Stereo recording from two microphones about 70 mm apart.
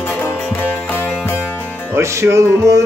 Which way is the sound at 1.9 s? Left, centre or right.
Right.